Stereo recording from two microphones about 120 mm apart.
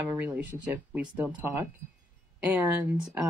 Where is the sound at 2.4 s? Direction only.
15° right (ahead or behind).